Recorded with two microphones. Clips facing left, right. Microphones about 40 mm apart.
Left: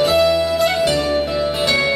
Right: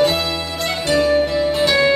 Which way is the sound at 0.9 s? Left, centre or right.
Centre.